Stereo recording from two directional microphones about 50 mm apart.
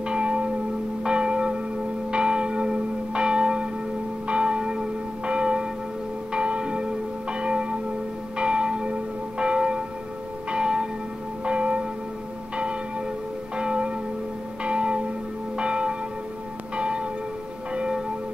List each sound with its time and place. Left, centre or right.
0.0 s church bell: right
13.6 s church bell: right